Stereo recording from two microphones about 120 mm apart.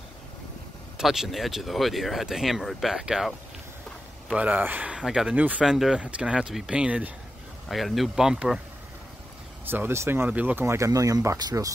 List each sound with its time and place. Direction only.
0.9 s speech: 5° right (ahead or behind)
7.6 s speech: centre (ahead or behind)
9.7 s speech: 20° right (ahead or behind)